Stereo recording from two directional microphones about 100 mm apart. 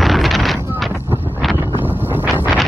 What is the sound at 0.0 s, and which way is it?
Wind noise, centre (ahead or behind).